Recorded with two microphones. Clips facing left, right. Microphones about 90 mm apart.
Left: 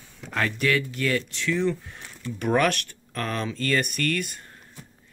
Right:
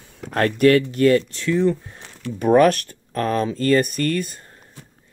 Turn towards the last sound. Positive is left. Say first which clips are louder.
# right 5 dB
turn(degrees=-30)  # may be behind; listen again after turning